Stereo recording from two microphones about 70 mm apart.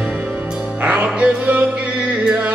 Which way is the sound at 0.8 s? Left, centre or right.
Right.